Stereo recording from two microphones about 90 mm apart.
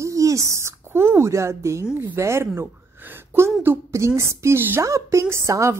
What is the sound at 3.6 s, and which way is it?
Speech, 30° right (ahead or behind).